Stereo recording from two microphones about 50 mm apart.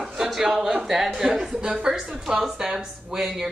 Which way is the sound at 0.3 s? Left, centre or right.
Centre.